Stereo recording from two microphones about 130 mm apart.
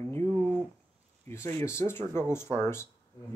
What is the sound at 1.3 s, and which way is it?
Speech, 20° left (ahead or behind).